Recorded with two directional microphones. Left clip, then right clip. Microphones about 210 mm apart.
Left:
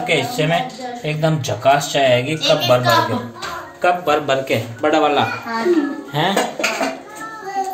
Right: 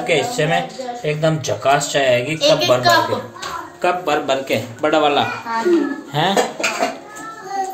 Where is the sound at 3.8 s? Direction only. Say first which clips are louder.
Left 2 dB; 5° right (ahead or behind).